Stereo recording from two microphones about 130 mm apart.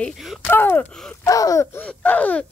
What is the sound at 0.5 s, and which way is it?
A woman's voice, 15° left (ahead or behind).